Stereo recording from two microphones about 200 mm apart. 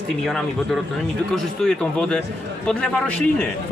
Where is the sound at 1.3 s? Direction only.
5° left (ahead or behind).